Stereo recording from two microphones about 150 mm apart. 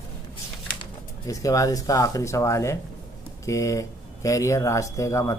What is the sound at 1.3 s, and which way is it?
Speech, 20° left (ahead or behind).